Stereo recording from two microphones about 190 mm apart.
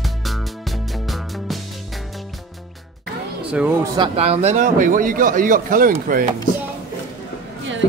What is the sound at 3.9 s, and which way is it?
A man's voice, 30° right (ahead or behind).